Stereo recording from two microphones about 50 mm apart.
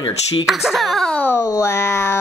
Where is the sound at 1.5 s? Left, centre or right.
Left.